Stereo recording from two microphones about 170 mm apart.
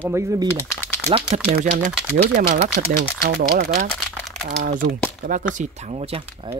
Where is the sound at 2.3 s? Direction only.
50° right (ahead or behind).